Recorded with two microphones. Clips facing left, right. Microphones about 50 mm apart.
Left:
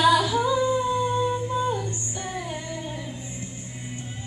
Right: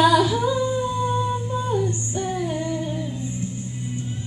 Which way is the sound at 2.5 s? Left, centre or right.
Centre.